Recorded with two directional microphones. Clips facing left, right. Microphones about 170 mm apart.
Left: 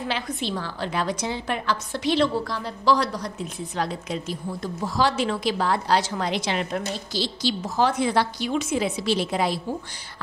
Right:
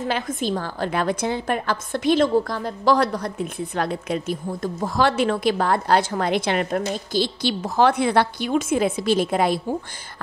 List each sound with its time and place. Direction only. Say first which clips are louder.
0.0 s a woman's voice: right 4 dB; 45° right (ahead or behind)